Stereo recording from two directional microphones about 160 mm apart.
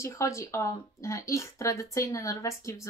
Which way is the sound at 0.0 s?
20° left (ahead or behind).